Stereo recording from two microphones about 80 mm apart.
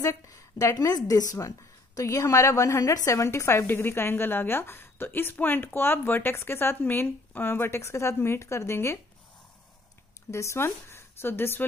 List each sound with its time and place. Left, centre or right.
0.0 s a woman's voice: left
10.3 s speech: left